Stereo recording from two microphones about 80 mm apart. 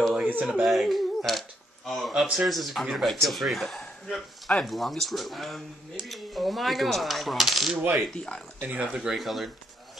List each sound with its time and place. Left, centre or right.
0.3 s speech: centre
0.6 s speech: centre
8.5 s speech: right
8.8 s speech: centre